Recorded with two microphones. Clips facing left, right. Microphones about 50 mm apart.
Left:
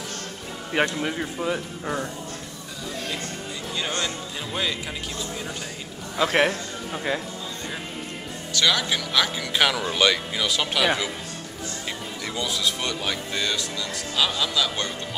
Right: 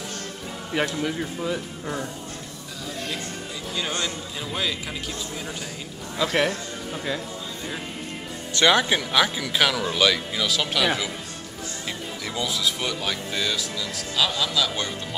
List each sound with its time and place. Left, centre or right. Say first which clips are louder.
0.7 s speech: left 1 dB; centre
4.0 s speech: even; centre
6.1 s speech: left 2 dB; left
8.5 s a man's voice: right 4 dB; right
9.4 s speech: even; centre
12.3 s speech: even; centre